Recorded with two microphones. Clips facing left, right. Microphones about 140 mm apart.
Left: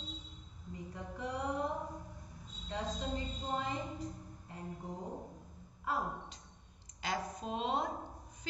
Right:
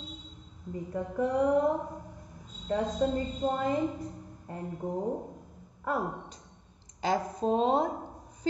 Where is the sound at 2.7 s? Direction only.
50° right (ahead or behind).